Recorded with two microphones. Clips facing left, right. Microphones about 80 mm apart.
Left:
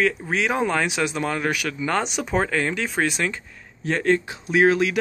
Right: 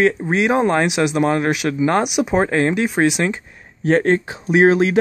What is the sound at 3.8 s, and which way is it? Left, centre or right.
Speech, right.